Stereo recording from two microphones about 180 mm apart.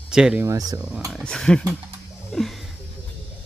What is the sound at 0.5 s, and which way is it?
Speech, 20° right (ahead or behind).